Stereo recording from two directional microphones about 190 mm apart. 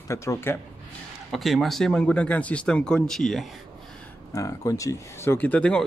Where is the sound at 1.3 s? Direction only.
Centre (ahead or behind).